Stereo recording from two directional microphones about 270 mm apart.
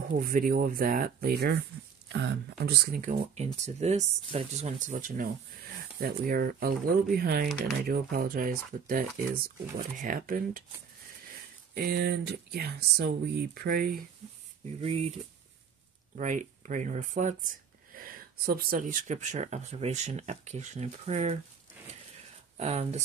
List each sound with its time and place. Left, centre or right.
0.1 s speech: right
11.7 s speech: right
16.2 s speech: right
22.6 s speech: right